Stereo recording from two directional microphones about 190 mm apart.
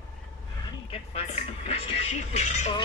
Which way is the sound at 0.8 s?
30° left (ahead or behind).